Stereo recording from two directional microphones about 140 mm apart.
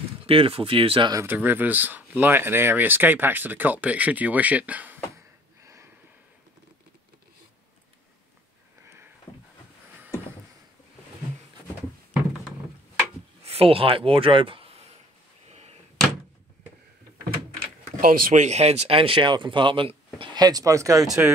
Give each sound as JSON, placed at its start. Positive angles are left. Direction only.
{"t": 0.2, "sound": "speech", "side_deg": -40}
{"t": 1.1, "sound": "speech", "side_deg": -15}
{"t": 8.8, "sound": "sniff", "side_deg": -15}
{"t": 13.4, "sound": "speech", "side_deg": -45}
{"t": 15.5, "sound": "a sound", "side_deg": -50}
{"t": 18.0, "sound": "speech", "side_deg": -85}